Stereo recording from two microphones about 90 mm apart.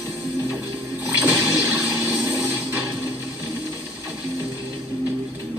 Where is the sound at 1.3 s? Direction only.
40° right (ahead or behind).